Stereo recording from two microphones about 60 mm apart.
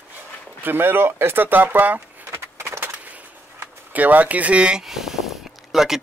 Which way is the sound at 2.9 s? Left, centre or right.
Right.